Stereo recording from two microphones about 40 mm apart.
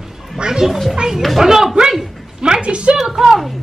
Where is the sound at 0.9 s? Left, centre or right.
Centre.